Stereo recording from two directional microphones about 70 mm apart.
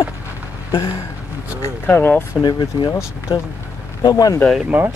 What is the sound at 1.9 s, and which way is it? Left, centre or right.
Speech, left.